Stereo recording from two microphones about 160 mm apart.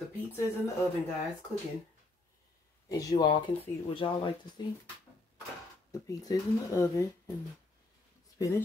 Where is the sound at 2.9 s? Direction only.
25° left (ahead or behind).